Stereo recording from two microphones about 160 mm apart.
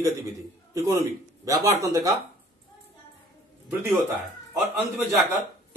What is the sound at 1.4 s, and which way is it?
Speech, 20° right (ahead or behind).